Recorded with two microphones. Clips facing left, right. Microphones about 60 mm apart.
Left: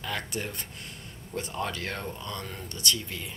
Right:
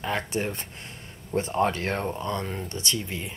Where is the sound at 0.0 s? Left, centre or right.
Right.